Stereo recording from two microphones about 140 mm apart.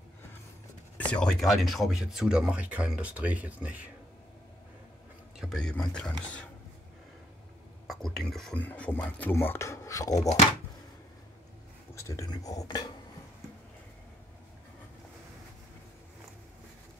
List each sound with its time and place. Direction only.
0.9 s speech: 10° left (ahead or behind); by 3.9 s 10° right (ahead or behind)
5.4 s speech: centre (ahead or behind)
7.8 s speech: centre (ahead or behind); by 10.3 s 25° left (ahead or behind)
11.9 s speech: 20° left (ahead or behind)